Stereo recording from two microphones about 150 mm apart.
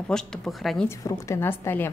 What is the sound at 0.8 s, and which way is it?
A woman's voice, 15° left (ahead or behind).